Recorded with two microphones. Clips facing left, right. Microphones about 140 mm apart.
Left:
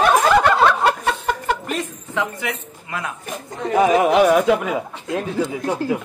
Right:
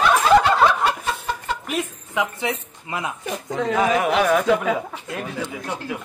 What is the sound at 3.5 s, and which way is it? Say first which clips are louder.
Speech: right 3 dB; 90° right.